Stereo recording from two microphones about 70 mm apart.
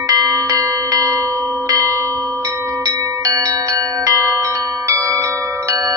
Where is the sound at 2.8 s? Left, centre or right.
Right.